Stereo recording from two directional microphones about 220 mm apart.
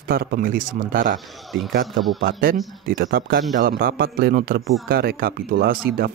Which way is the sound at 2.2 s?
40° right (ahead or behind).